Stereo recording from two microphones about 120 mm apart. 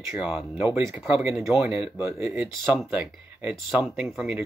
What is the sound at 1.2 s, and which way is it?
Speech, 20° right (ahead or behind).